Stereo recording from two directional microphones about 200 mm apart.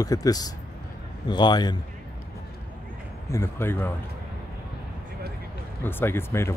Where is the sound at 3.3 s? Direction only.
10° left (ahead or behind).